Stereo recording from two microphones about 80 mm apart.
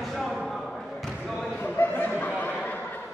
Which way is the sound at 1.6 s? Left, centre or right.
Left.